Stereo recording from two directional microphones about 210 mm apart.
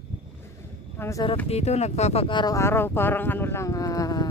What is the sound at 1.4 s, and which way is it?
Speech, 30° left (ahead or behind).